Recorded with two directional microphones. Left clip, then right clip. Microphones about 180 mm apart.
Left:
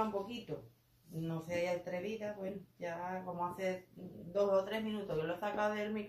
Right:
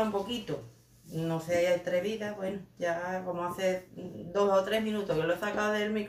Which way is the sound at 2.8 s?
10° right (ahead or behind).